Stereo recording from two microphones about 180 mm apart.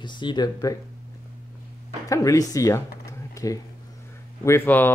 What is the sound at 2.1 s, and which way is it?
Speech, 20° left (ahead or behind).